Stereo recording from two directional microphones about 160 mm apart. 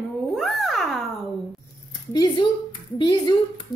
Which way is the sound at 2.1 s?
25° left (ahead or behind).